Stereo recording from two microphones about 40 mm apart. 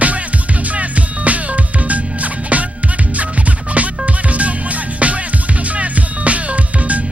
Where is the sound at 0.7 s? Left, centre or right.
Right.